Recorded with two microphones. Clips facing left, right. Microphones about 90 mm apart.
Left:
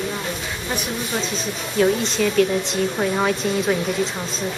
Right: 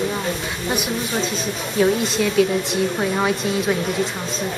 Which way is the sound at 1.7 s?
5° right (ahead or behind).